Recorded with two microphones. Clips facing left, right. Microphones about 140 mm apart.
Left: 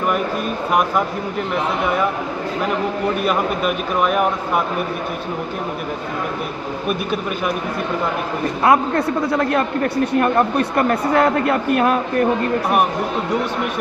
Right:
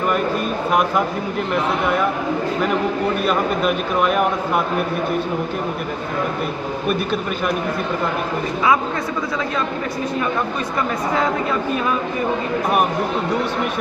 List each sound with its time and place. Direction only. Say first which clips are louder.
3.3 s speech: right 1 dB; 5° left (ahead or behind)
8.6 s speech: left 4 dB; 60° left (ahead or behind)